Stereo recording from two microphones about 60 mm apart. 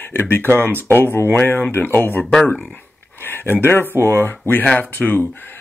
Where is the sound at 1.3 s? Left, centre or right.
Left.